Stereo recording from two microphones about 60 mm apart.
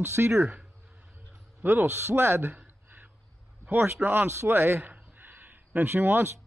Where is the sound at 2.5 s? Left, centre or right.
Right.